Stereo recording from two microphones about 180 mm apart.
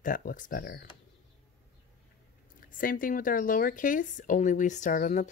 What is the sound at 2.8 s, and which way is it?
Speech, 50° left (ahead or behind).